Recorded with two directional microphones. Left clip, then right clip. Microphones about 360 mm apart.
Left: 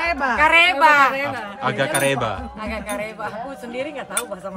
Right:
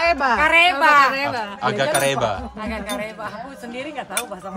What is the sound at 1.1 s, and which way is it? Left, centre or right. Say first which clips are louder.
Speech: right 2 dB; right.